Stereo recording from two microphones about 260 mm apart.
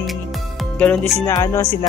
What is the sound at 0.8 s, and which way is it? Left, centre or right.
Speech, centre.